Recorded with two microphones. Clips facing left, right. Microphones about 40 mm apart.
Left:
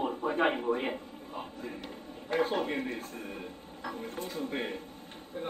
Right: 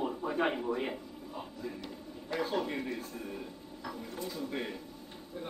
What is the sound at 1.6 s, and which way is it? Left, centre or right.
A man's voice, left.